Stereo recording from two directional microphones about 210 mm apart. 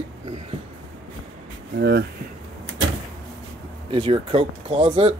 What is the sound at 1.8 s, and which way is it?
Speech, 50° right (ahead or behind).